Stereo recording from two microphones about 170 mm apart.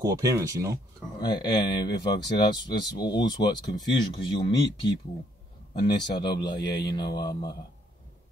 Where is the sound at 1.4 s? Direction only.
25° left (ahead or behind).